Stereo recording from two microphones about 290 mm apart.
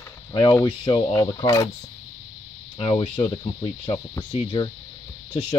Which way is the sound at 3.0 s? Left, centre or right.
Centre.